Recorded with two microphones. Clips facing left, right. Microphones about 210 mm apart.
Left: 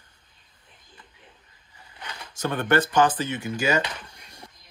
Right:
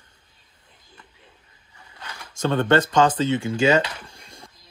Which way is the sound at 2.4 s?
25° right (ahead or behind).